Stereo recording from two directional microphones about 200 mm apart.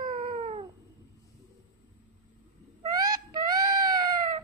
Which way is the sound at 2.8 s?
20° right (ahead or behind).